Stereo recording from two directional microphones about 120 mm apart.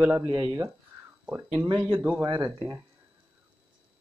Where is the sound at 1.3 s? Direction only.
15° right (ahead or behind).